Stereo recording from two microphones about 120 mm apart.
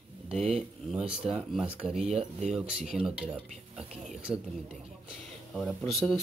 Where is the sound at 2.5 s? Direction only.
5° right (ahead or behind).